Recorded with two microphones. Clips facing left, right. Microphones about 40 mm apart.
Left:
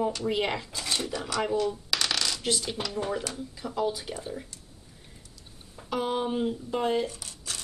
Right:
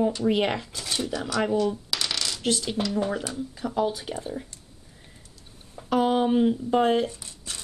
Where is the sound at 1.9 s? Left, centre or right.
Centre.